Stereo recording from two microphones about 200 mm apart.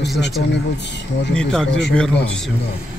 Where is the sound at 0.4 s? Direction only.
60° left (ahead or behind).